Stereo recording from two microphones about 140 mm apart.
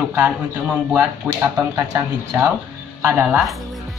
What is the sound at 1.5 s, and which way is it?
Speech, 20° right (ahead or behind).